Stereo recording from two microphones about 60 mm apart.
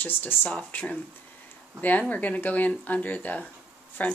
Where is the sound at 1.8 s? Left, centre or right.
Left.